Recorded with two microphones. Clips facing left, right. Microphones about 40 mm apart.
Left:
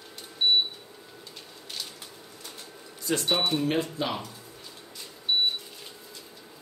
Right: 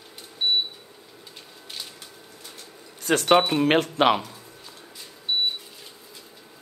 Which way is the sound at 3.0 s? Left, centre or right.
Right.